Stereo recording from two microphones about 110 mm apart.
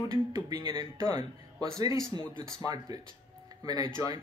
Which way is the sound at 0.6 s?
45° right (ahead or behind).